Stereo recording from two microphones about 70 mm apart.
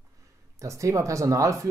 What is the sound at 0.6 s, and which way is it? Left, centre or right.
Speech, right.